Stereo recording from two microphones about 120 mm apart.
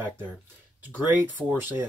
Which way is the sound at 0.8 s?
15° right (ahead or behind).